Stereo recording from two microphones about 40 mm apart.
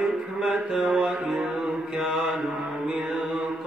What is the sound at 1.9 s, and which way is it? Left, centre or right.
Mantra, centre.